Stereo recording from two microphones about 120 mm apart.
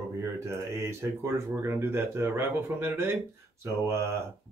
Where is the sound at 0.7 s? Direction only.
20° right (ahead or behind).